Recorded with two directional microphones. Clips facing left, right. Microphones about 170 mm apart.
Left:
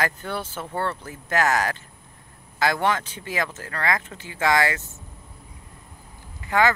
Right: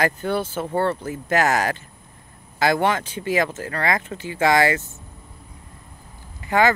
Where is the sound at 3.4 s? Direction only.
25° right (ahead or behind).